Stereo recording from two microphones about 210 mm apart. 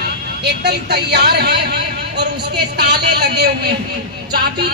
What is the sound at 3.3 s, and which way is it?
Speech, 50° right (ahead or behind).